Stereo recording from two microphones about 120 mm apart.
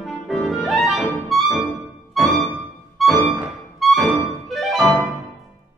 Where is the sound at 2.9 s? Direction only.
Centre (ahead or behind).